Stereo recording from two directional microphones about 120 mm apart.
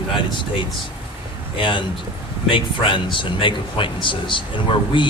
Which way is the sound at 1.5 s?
45° left (ahead or behind).